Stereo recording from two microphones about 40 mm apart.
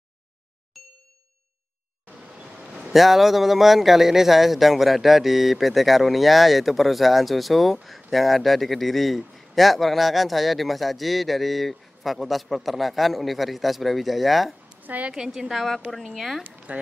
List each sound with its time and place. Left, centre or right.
0.8 s ding: centre
2.9 s speech: centre
14.8 s a sound: right
15.1 s a woman's voice: centre
15.5 s a woman's voice: centre